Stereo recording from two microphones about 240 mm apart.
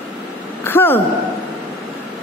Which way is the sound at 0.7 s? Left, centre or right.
Centre.